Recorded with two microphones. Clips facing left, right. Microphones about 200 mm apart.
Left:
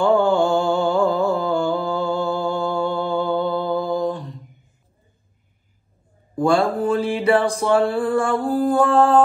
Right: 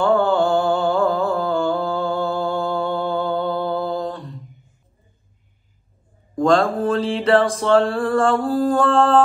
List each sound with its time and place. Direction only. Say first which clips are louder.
0.0 s mantra: even; 20° left (ahead or behind)
6.3 s mantra: right 1 dB; 5° left (ahead or behind)